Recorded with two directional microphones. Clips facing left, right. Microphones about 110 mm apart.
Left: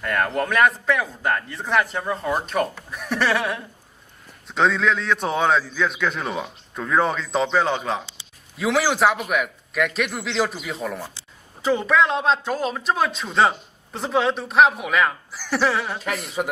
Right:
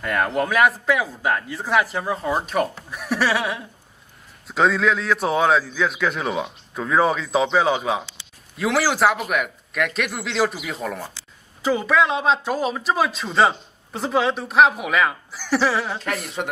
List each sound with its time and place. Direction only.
0.0 s speech: 5° right (ahead or behind)